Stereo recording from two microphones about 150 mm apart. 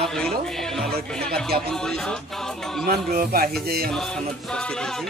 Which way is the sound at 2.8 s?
90° right.